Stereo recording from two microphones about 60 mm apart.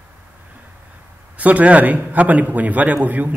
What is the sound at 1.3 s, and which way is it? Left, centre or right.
A man's voice, right.